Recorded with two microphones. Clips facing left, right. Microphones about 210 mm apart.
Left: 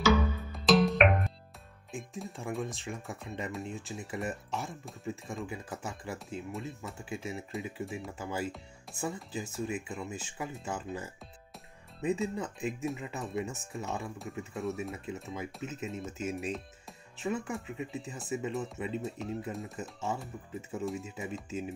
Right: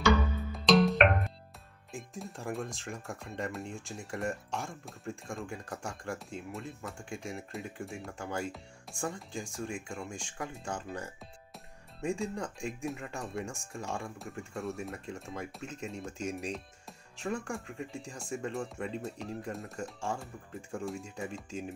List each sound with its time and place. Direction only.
0.0 s music: centre (ahead or behind)
1.9 s speech: centre (ahead or behind)